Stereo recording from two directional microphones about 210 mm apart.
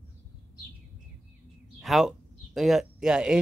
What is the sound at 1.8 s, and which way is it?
Speech, centre (ahead or behind).